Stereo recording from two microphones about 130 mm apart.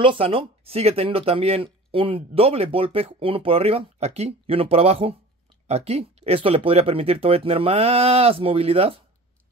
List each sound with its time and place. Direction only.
0.0 s speech: 45° right (ahead or behind)